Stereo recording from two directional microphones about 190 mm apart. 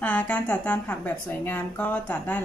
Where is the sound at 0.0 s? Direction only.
10° left (ahead or behind).